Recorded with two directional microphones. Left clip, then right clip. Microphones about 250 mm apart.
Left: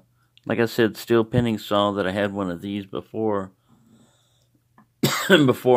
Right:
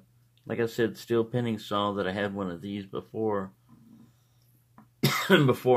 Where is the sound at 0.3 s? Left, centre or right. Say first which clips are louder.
Left 7 dB; left.